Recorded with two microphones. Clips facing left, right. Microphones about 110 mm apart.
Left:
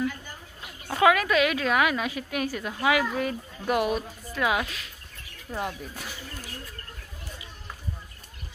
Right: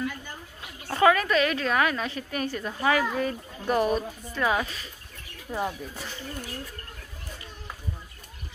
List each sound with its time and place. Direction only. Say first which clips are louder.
0.8 s a woman's voice: even; 5° left (ahead or behind)